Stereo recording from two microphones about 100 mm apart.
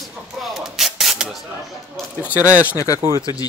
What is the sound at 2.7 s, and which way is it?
Speech, 35° left (ahead or behind).